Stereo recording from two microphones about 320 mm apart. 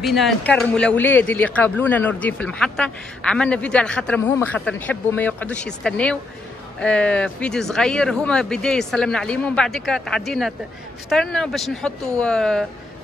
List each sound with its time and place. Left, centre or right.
0.0 s speech: centre